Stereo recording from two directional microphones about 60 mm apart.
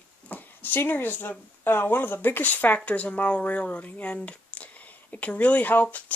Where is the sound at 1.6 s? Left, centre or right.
Left.